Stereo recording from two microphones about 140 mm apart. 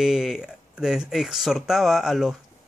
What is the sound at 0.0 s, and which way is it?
Speech, 5° right (ahead or behind).